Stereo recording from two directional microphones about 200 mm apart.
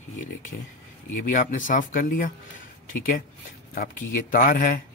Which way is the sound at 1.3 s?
40° left (ahead or behind).